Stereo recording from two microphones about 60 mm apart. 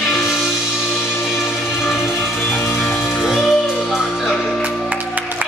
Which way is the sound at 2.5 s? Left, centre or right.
Left.